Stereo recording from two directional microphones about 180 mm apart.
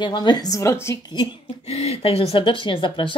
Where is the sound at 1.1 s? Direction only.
35° left (ahead or behind).